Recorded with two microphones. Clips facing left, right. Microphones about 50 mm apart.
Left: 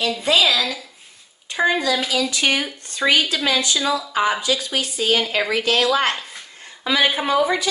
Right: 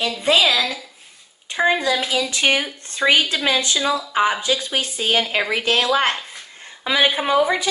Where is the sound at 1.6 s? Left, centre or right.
Right.